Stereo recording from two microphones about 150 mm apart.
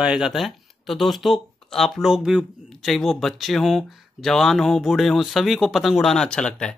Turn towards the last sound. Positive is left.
turn(degrees=5)  # may be behind; listen again after turning